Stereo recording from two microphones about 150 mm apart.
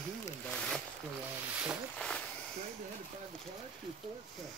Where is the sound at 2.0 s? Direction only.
5° left (ahead or behind).